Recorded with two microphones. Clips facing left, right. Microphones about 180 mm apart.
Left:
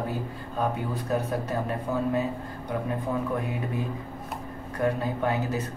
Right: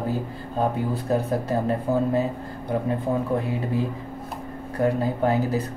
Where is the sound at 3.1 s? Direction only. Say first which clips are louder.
Right 4 dB; 30° right (ahead or behind).